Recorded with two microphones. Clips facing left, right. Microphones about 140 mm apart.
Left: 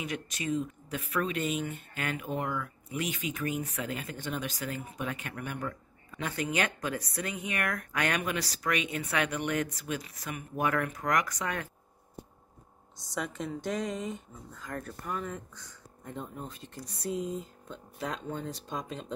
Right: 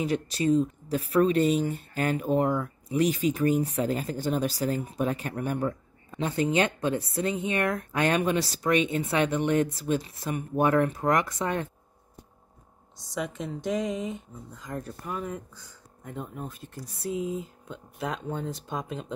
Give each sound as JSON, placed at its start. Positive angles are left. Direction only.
{"t": 0.0, "sound": "speech", "side_deg": -35}
{"t": 13.1, "sound": "speech", "side_deg": 0}